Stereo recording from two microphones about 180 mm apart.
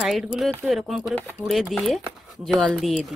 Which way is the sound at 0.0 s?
Centre (ahead or behind).